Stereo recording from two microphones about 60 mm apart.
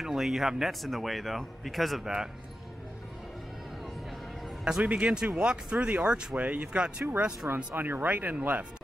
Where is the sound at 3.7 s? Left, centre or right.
Centre.